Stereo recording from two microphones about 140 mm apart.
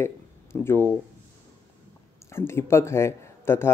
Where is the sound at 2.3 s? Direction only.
20° left (ahead or behind).